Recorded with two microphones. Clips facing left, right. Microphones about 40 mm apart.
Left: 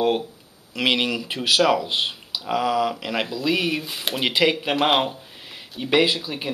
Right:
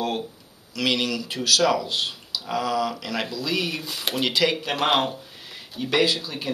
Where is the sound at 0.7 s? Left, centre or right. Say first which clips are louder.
Left 2 dB; left.